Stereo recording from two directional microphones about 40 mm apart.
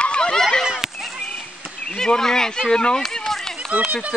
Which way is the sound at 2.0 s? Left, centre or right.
Centre.